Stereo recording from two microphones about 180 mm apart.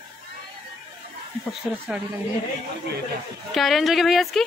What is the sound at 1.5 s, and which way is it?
Speech, 5° right (ahead or behind).